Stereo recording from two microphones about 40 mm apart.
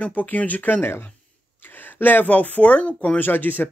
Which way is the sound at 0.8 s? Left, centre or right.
Left.